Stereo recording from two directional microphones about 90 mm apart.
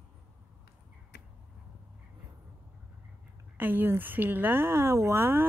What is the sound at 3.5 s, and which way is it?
Speech, 20° right (ahead or behind).